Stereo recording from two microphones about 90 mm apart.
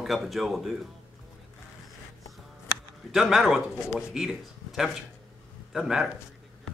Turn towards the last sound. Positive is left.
turn(degrees=-5)  # may be behind; listen again after turning